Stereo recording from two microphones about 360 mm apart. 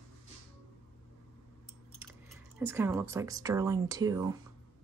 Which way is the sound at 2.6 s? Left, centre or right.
Centre.